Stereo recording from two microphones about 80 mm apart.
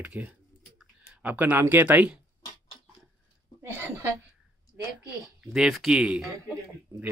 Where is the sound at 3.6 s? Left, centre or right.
Right.